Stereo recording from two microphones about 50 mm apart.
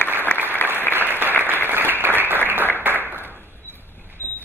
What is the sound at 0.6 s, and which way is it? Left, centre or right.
Applause, left.